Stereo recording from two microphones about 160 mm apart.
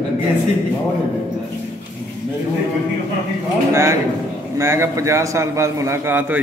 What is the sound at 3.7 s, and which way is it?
A man's voice, 15° right (ahead or behind).